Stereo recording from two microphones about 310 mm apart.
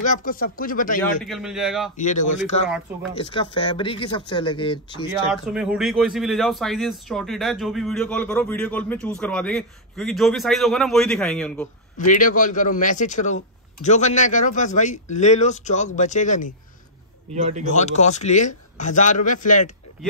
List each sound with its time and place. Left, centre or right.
0.0 s a man's voice: left
1.2 s a man's voice: centre
2.0 s a man's voice: left
5.3 s a man's voice: centre
12.1 s a man's voice: left
17.3 s speech: right
17.7 s a man's voice: left